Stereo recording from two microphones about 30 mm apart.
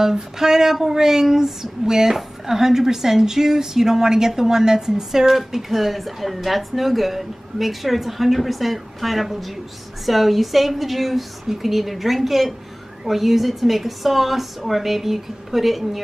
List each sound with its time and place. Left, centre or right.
0.0 s speech: centre
5.3 s speech: centre